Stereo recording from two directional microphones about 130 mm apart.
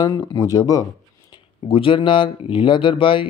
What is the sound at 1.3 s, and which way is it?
Speech, 45° left (ahead or behind).